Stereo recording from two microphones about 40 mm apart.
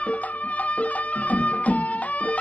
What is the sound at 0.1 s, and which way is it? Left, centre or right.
Music, left.